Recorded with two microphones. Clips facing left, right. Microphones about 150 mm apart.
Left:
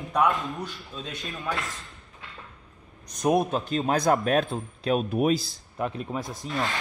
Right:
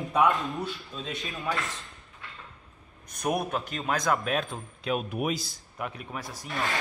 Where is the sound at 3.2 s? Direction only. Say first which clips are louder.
Left 6 dB; 20° left (ahead or behind); by 4.5 s 45° left (ahead or behind).